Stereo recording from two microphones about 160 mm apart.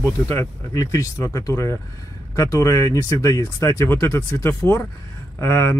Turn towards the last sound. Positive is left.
turn(degrees=15)  # may be behind; listen again after turning